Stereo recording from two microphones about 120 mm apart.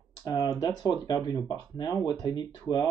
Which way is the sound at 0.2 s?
30° left (ahead or behind).